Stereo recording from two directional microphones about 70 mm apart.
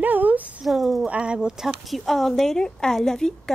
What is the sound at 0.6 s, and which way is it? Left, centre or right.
Speech, centre.